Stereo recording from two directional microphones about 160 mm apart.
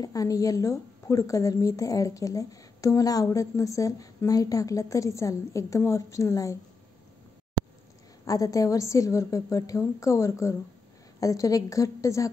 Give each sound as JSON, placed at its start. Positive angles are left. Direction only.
{"t": 0.0, "sound": "a woman's voice", "side_deg": 20}
{"t": 8.3, "sound": "a woman's voice", "side_deg": 20}